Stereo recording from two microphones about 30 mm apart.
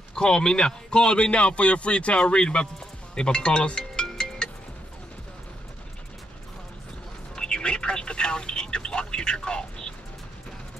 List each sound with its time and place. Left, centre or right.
0.1 s a man's voice: left
2.3 s speech: left
3.2 s music: left
7.3 s telephone: left